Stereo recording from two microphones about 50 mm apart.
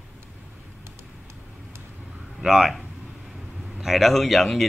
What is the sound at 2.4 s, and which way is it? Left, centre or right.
A man's voice, centre.